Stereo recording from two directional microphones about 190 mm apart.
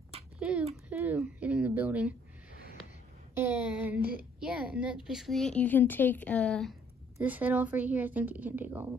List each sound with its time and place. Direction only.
0.4 s speech: 5° right (ahead or behind)
3.3 s speech: 10° right (ahead or behind)
4.0 s speech: 50° right (ahead or behind)
4.4 s a woman's voice: 5° right (ahead or behind)
7.2 s speech: 10° right (ahead or behind)